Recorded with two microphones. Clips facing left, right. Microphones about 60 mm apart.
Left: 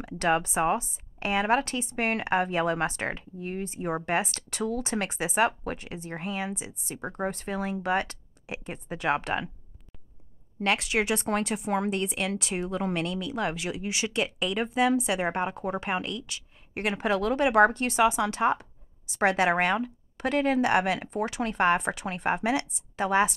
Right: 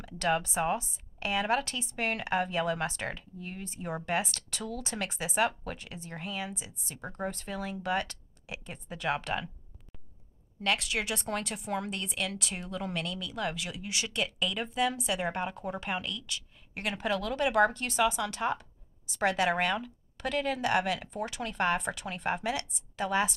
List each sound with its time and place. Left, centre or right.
0.0 s speech: centre
1.2 s speech: left
3.6 s speech: centre
10.6 s speech: left